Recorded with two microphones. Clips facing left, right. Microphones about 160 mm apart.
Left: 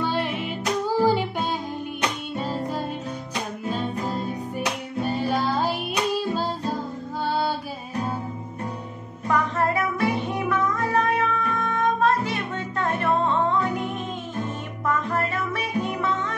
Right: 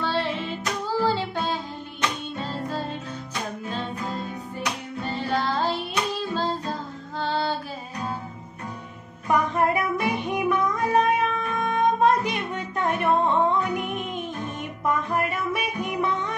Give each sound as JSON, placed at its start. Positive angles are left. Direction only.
{"t": 0.0, "sound": "music", "side_deg": 15}
{"t": 4.6, "sound": "music", "side_deg": 10}
{"t": 7.2, "sound": "music", "side_deg": 10}
{"t": 9.3, "sound": "music", "side_deg": -15}